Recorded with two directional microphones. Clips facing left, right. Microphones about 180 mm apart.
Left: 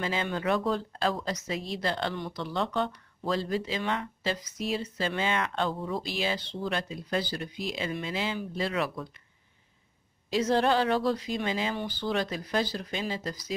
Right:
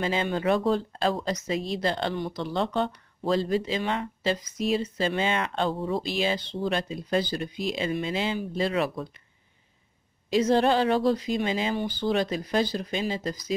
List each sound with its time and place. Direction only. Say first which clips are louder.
0.0 s speech: right 4 dB; 25° right (ahead or behind)
10.3 s speech: right 3 dB; 20° right (ahead or behind)